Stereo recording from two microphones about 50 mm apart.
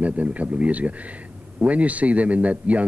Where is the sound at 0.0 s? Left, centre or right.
Right.